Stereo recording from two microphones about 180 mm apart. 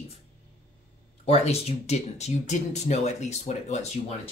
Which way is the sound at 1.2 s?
35° left (ahead or behind).